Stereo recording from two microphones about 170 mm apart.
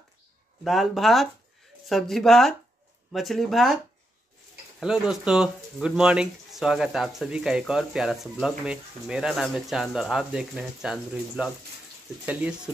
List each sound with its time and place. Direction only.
0.7 s speech: centre (ahead or behind)